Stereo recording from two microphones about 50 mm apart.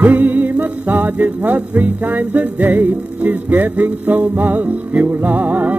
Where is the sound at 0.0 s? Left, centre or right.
Right.